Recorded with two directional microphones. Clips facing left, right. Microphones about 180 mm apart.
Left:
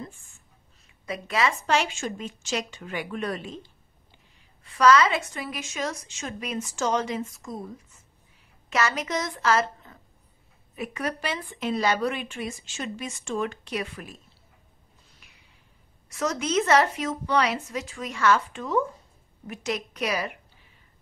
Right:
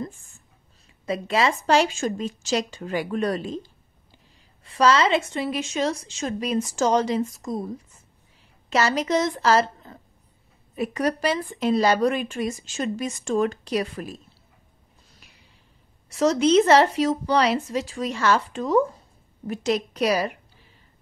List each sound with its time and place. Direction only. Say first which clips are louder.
1.0 s speech: right 4 dB; 30° right (ahead or behind)
4.7 s a woman's voice: right 1 dB; 30° right (ahead or behind)
16.1 s speech: right 9 dB; 30° right (ahead or behind)